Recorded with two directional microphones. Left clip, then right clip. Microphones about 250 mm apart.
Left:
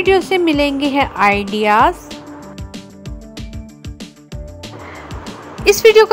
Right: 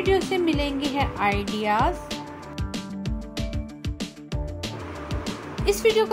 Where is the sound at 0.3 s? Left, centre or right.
Left.